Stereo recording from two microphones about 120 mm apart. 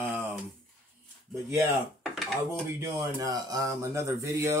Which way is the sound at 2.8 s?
30° right (ahead or behind).